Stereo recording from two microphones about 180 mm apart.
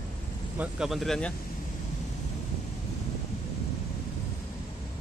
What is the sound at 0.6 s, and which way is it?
Speech, 5° right (ahead or behind).